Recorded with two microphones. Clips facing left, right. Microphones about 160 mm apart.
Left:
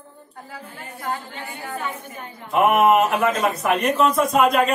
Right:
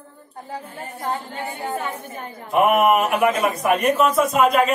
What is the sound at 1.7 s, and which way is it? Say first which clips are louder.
Speech: right 3 dB; 45° right (ahead or behind).